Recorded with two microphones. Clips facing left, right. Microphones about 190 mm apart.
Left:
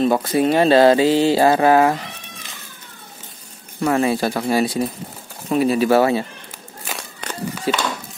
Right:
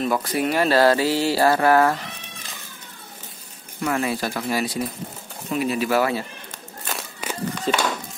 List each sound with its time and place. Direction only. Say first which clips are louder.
0.0 s speech: left 6 dB; 25° left (ahead or behind)
3.8 s speech: left 6 dB; 30° left (ahead or behind)
6.8 s a sound: even; centre (ahead or behind)
7.7 s speech: left 2 dB; 10° left (ahead or behind)